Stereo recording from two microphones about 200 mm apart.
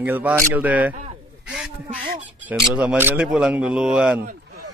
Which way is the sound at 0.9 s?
35° right (ahead or behind).